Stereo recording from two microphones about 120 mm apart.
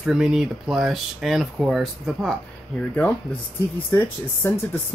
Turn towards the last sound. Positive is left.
turn(degrees=20)  # may be behind; listen again after turning